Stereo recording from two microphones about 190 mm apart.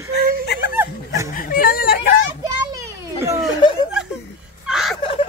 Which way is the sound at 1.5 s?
50° left (ahead or behind).